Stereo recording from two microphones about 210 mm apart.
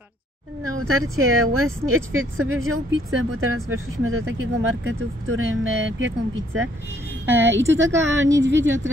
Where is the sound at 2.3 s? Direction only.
80° right.